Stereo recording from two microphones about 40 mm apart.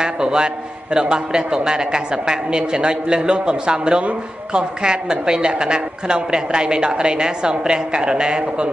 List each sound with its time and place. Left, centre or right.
0.0 s a man's voice: right